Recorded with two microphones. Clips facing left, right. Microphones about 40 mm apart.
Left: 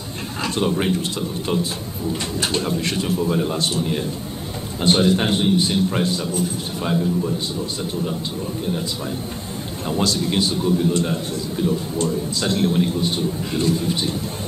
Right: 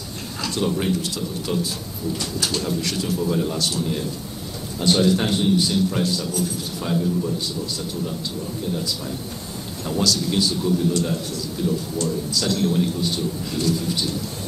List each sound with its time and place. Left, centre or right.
0.4 s a man's voice: left
2.4 s a man's voice: left
9.8 s a man's voice: left